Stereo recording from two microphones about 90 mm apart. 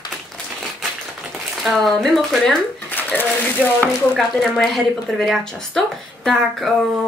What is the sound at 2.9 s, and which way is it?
Speech, 20° left (ahead or behind).